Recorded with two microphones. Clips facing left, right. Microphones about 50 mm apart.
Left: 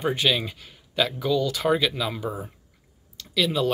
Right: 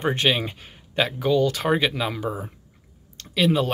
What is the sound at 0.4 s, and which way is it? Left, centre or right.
Speech, right.